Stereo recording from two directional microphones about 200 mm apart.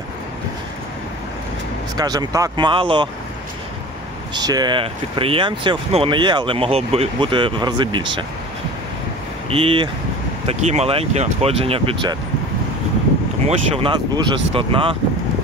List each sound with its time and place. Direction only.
2.0 s speech: 20° right (ahead or behind)
4.3 s speech: 20° right (ahead or behind)
9.5 s speech: 25° right (ahead or behind)
13.5 s speech: 25° right (ahead or behind)